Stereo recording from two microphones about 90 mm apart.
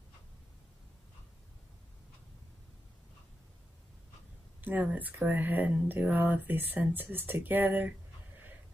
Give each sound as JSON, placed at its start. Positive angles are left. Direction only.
{"t": 4.6, "sound": "speech", "side_deg": -20}